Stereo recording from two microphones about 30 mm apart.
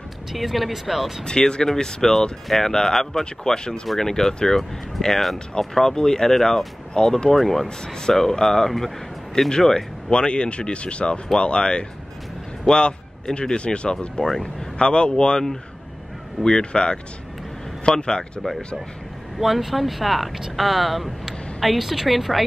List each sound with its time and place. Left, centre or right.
0.3 s speech: centre
1.2 s speech: left
3.5 s speech: left
4.0 s speech: centre
7.2 s speech: centre
10.1 s speech: left; by 14.5 s centre
14.8 s speech: left
16.4 s speech: left
19.3 s speech: centre